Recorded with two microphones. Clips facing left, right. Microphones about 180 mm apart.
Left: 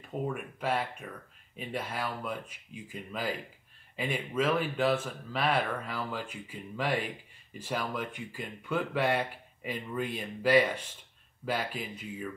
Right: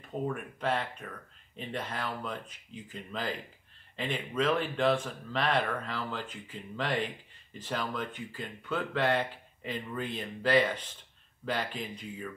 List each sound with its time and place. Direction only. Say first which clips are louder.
0.3 s speech: even; 10° left (ahead or behind)